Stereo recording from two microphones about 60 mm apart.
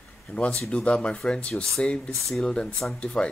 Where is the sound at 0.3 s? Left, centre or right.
Centre.